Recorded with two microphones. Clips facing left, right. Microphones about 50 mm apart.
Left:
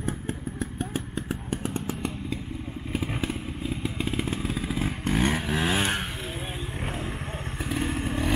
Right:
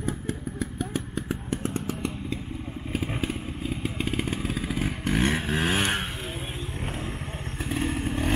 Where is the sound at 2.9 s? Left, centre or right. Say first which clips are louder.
Even; centre.